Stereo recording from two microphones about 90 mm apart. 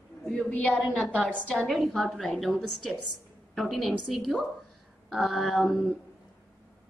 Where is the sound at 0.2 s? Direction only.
5° left (ahead or behind).